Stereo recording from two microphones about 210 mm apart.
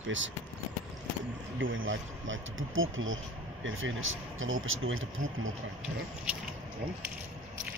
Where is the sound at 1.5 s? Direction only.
65° right (ahead or behind).